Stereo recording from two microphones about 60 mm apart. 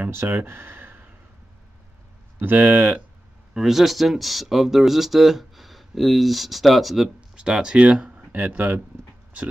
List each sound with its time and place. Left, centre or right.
0.3 s a sound: right
2.3 s speech: right
3.5 s speech: centre; by 8.8 s right